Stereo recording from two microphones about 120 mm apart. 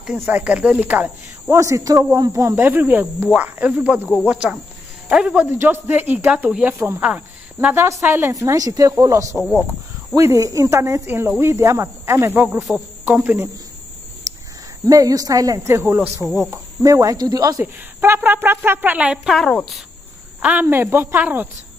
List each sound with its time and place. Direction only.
0.2 s speech: 10° right (ahead or behind)
1.6 s speech: 30° right (ahead or behind)
9.4 s speech: 5° left (ahead or behind)
10.1 s speech: 25° right (ahead or behind)
12.7 s speech: 5° right (ahead or behind)
13.0 s cricket: 15° right (ahead or behind)
14.3 s cricket: 25° right (ahead or behind)
14.9 s speech: 30° right (ahead or behind)
18.0 s speech: 20° right (ahead or behind)
19.3 s speech: centre (ahead or behind)
20.6 s speech: 20° right (ahead or behind)